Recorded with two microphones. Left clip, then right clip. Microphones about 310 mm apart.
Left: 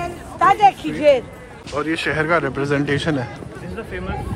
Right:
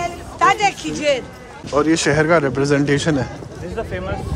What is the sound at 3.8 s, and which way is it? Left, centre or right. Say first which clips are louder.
Speech: right 4 dB; right.